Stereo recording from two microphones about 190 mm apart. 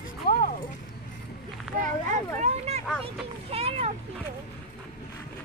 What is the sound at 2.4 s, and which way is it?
Vehicle, 35° right (ahead or behind).